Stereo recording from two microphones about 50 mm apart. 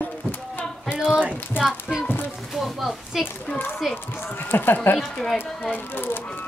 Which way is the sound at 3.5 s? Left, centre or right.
Left.